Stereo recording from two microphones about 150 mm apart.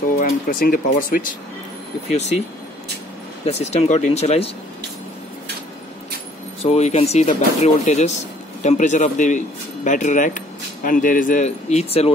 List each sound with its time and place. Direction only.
0.2 s speech: 65° left (ahead or behind)
2.0 s speech: 50° left (ahead or behind)
3.4 s speech: 45° left (ahead or behind)
6.6 s speech: 45° left (ahead or behind)